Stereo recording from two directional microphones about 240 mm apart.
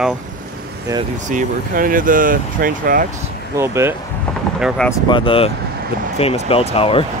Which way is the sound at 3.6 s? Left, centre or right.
Centre.